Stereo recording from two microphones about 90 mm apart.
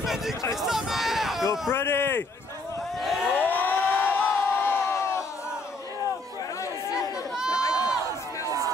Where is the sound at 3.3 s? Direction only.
20° left (ahead or behind).